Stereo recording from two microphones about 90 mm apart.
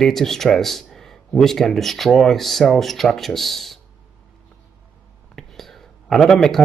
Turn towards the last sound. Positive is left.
turn(degrees=5)  # may be behind; listen again after turning